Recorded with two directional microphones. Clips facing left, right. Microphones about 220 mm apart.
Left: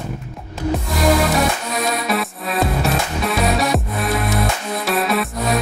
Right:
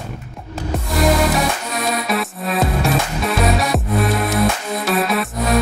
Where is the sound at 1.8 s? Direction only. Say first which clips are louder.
Right 1 dB; centre (ahead or behind).